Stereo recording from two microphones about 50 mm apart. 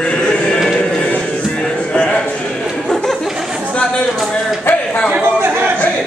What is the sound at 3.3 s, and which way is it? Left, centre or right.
Chatter, centre.